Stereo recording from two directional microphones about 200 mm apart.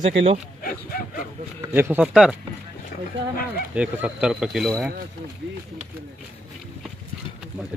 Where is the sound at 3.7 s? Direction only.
5° right (ahead or behind).